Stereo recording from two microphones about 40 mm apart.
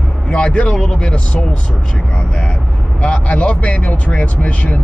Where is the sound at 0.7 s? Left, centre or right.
Left.